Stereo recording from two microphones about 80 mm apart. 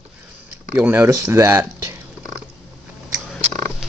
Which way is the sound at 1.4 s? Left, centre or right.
Right.